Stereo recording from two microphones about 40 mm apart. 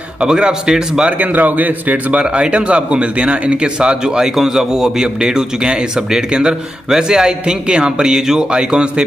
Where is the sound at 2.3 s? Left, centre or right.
Right.